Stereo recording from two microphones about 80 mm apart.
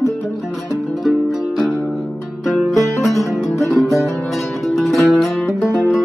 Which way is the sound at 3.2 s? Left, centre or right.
Left.